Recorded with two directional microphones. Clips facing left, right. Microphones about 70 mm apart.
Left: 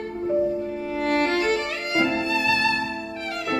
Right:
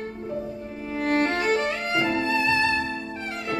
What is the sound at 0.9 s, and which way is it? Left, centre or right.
Music, right.